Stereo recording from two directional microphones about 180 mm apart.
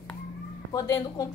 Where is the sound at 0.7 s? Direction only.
20° left (ahead or behind).